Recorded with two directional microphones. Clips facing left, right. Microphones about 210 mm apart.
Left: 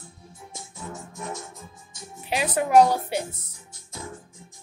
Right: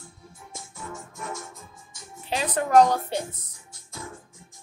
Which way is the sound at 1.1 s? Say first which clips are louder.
Left 1 dB; 20° left (ahead or behind).